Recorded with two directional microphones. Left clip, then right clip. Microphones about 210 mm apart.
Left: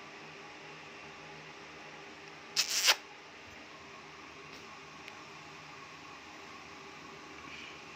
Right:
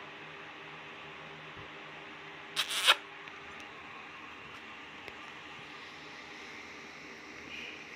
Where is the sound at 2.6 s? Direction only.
5° left (ahead or behind).